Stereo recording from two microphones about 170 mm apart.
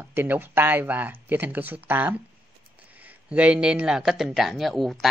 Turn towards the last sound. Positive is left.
turn(degrees=0)  # may be behind; listen again after turning